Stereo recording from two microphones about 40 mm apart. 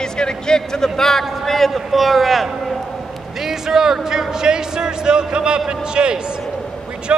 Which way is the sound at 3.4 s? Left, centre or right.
Centre.